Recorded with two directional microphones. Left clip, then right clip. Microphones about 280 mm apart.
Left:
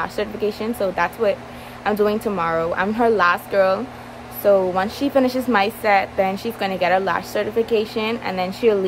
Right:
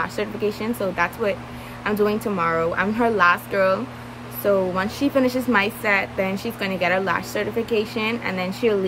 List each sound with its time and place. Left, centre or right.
0.0 s a woman's voice: centre